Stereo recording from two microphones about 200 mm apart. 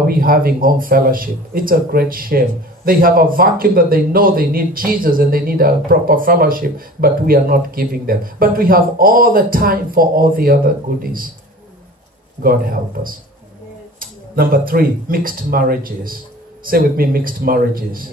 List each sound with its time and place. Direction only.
0.0 s speech: 45° right (ahead or behind)
12.4 s speech: 45° right (ahead or behind)